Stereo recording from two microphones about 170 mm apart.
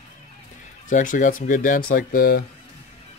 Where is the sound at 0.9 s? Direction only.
50° left (ahead or behind).